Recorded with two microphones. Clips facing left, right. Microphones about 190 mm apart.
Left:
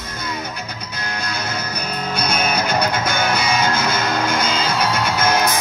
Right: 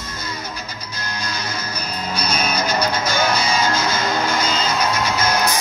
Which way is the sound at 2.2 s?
55° left (ahead or behind).